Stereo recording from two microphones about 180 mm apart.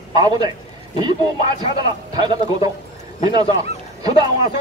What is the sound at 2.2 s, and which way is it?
Speech, 25° right (ahead or behind).